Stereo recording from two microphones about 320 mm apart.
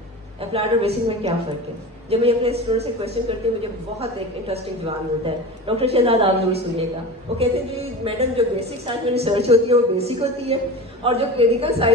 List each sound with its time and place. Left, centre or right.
0.4 s a woman's voice: centre
5.2 s a woman's voice: centre